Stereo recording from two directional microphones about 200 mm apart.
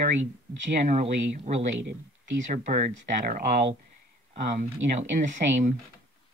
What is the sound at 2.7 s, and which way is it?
Speech, 40° right (ahead or behind).